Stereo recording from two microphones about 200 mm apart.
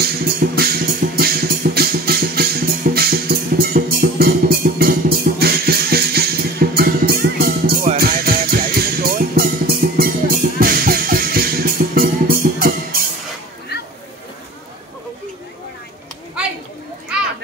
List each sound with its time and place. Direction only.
0.0 s music: 50° right (ahead or behind)